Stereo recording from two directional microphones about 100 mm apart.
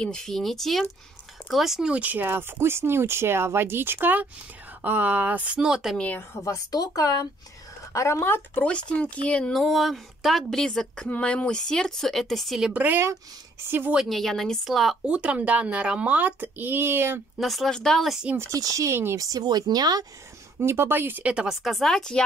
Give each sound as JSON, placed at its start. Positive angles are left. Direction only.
{"t": 0.0, "sound": "speech", "side_deg": 5}
{"t": 5.9, "sound": "speech", "side_deg": 15}
{"t": 6.3, "sound": "speech", "side_deg": 30}
{"t": 8.6, "sound": "speech", "side_deg": 10}
{"t": 12.7, "sound": "speech", "side_deg": -20}
{"t": 13.9, "sound": "speech", "side_deg": 0}
{"t": 15.0, "sound": "speech", "side_deg": -10}
{"t": 17.4, "sound": "speech", "side_deg": 0}
{"t": 18.2, "sound": "speech", "side_deg": -20}
{"t": 18.5, "sound": "speech", "side_deg": -35}
{"t": 19.1, "sound": "speech", "side_deg": -35}
{"t": 20.6, "sound": "speech", "side_deg": -25}